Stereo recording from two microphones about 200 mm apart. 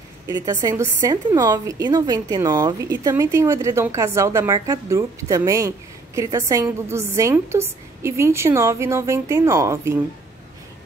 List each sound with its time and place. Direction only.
0.3 s a woman's voice: 20° right (ahead or behind)